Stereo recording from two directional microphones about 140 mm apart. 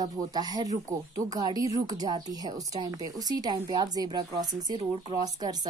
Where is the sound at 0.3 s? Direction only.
25° right (ahead or behind).